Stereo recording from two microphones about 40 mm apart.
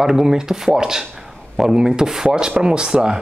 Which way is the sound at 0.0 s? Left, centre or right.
Centre.